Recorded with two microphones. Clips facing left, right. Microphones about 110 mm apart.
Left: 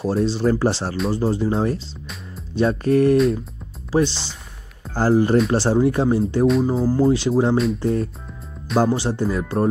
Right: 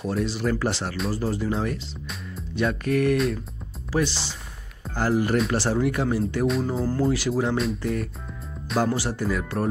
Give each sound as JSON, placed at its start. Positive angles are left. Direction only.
{"t": 0.0, "sound": "speech", "side_deg": 30}
{"t": 4.1, "sound": "speech", "side_deg": 0}
{"t": 4.9, "sound": "speech", "side_deg": 30}
{"t": 6.4, "sound": "speech", "side_deg": 0}
{"t": 7.0, "sound": "speech", "side_deg": 25}
{"t": 7.5, "sound": "speech", "side_deg": 0}
{"t": 7.8, "sound": "speech", "side_deg": 30}